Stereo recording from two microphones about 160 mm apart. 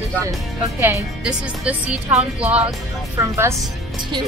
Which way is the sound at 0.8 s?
15° right (ahead or behind).